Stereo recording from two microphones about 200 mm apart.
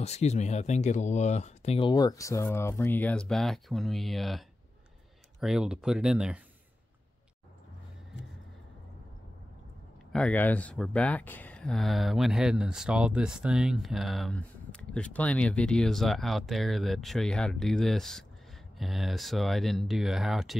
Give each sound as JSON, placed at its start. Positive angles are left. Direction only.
{"t": 0.0, "sound": "speech", "side_deg": 35}
{"t": 10.1, "sound": "speech", "side_deg": 5}